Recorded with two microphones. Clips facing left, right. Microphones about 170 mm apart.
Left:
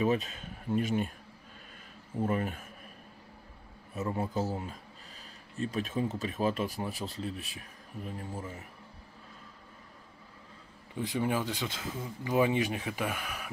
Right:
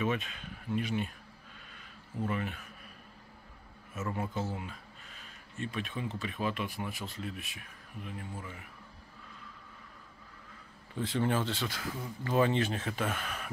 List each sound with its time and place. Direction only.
0.0 s speech: 40° left (ahead or behind)
2.1 s a man's voice: 40° left (ahead or behind)
4.1 s speech: 35° left (ahead or behind)
11.0 s speech: 15° left (ahead or behind)